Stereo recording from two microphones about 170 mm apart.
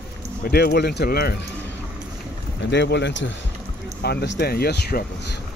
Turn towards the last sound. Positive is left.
turn(degrees=70)  # may be behind; listen again after turning